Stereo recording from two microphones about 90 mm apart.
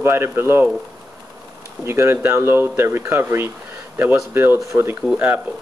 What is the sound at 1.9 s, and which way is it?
Speech, 25° right (ahead or behind).